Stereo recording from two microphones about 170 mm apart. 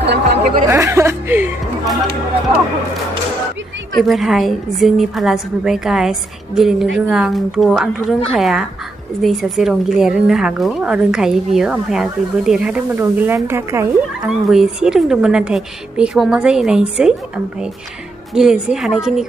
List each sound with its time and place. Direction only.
0.0 s music: 85° right
0.7 s speech: 15° right (ahead or behind)
3.9 s a woman's voice: centre (ahead or behind)
14.2 s a woman's voice: 5° right (ahead or behind)
18.3 s a woman's voice: 5° right (ahead or behind)